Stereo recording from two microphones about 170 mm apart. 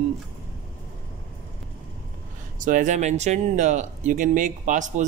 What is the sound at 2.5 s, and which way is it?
Speech, 50° right (ahead or behind).